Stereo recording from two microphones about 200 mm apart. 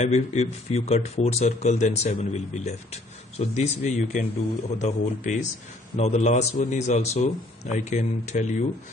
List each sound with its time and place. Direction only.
0.0 s speech: 35° left (ahead or behind)